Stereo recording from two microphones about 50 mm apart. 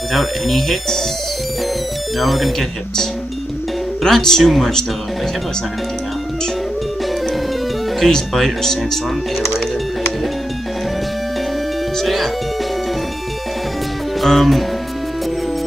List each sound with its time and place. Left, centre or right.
0.1 s speech: centre
2.1 s speech: centre
4.0 s speech: centre
8.1 s speech: centre
12.0 s speech: centre
14.2 s speech: centre